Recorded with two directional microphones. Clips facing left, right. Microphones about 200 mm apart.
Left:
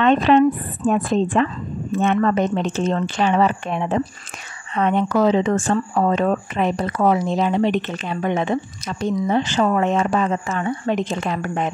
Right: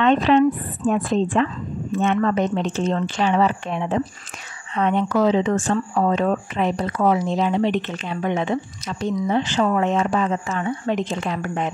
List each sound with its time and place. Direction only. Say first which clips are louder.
0.0 s speech: left 1 dB; 50° left (ahead or behind)